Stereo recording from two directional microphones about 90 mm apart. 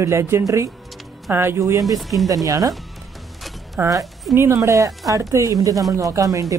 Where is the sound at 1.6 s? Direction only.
40° right (ahead or behind).